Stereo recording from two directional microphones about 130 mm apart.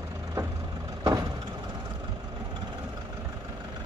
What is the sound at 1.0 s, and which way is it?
Vehicle, 30° right (ahead or behind).